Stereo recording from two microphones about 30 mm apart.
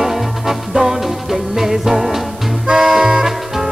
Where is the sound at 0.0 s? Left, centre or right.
Centre.